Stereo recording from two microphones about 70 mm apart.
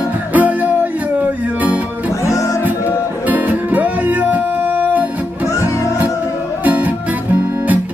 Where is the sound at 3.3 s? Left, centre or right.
Right.